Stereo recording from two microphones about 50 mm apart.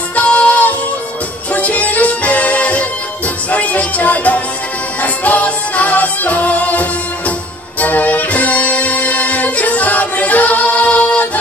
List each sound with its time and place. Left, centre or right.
0.1 s music: left